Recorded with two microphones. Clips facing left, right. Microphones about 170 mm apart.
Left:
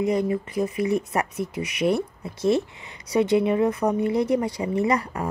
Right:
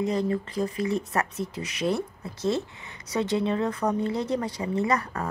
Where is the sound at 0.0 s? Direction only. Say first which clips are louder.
Left 3 dB; 15° left (ahead or behind).